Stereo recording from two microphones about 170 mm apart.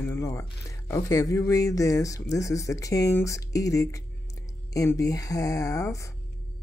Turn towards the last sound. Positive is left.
turn(degrees=20)  # may be behind; listen again after turning